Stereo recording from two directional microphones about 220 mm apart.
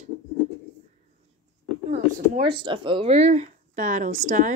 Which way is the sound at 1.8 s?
30° right (ahead or behind).